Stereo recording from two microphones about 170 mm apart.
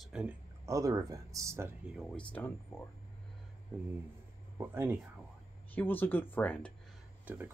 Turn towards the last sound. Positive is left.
turn(degrees=-10)  # may be behind; listen again after turning